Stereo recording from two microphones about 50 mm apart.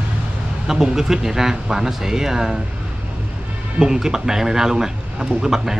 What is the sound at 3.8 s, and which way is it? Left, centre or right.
A man's voice, centre.